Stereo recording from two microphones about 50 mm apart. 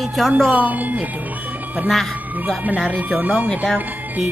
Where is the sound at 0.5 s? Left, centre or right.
Right.